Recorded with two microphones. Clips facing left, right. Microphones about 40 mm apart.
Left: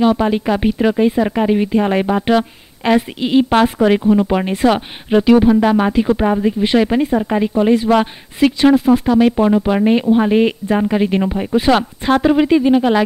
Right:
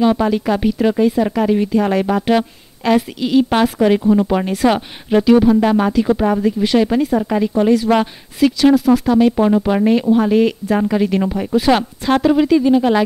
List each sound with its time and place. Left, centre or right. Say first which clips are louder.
0.2 s speech: even; left
9.4 s speech: even; centre